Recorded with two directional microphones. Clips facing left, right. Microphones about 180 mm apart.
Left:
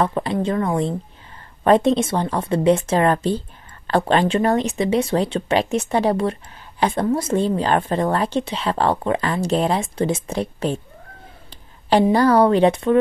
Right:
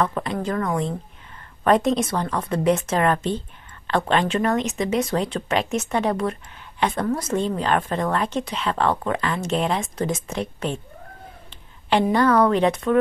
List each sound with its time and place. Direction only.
0.0 s a woman's voice: 30° left (ahead or behind)